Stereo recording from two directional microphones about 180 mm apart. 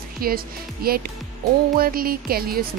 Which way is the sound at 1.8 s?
55° right (ahead or behind).